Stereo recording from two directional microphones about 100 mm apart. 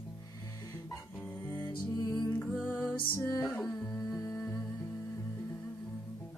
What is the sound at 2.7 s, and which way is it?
Music, 20° left (ahead or behind).